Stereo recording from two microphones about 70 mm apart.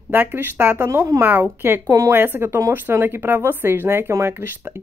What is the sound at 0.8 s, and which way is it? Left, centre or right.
Speech, right.